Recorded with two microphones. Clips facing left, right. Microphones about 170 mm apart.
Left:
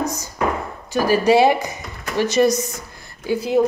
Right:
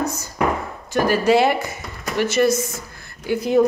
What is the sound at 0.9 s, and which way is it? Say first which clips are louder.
Speech: left 1 dB; 10° left (ahead or behind).